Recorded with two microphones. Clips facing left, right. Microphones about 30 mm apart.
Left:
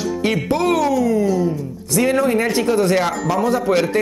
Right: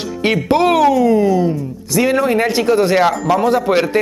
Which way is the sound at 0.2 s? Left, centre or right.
Right.